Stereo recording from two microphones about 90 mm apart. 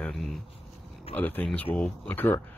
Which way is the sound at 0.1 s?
Centre (ahead or behind).